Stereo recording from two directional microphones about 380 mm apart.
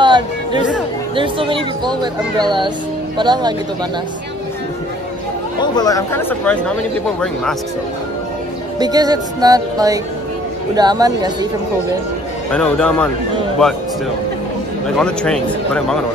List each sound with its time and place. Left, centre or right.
0.0 s chatter: centre
1.1 s speech: centre
5.6 s speech: centre
8.7 s speech: centre
12.4 s speech: centre
15.0 s speech: centre